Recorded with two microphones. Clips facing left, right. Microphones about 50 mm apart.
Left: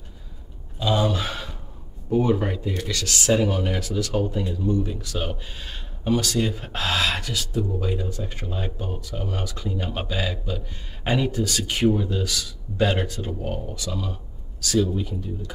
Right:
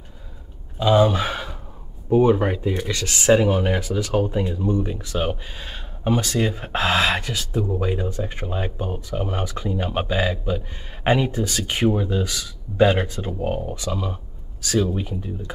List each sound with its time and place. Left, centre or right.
0.7 s speech: right